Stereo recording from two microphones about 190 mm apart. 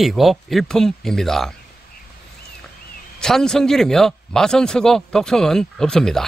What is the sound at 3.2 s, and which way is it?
Speech, 5° left (ahead or behind).